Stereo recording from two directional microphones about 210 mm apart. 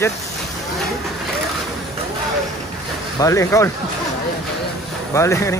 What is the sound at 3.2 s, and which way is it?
Speech, 15° left (ahead or behind).